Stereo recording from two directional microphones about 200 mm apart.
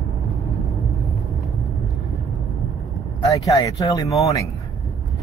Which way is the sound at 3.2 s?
15° left (ahead or behind).